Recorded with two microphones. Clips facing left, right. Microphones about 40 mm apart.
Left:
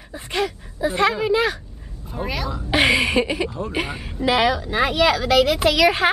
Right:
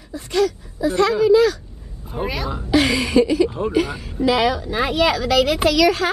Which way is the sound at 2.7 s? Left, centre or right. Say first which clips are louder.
Right 1 dB; left.